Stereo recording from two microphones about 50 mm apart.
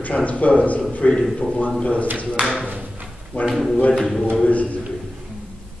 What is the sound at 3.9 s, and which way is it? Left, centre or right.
Speech, centre.